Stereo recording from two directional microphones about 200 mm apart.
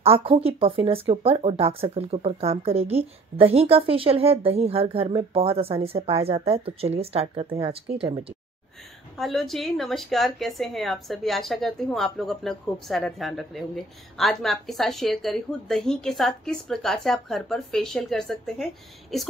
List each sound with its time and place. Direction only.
0.0 s speech: 25° right (ahead or behind)
9.2 s a woman's voice: centre (ahead or behind)